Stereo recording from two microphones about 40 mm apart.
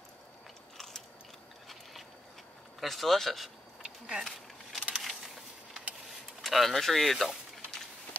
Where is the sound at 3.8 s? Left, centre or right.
Right.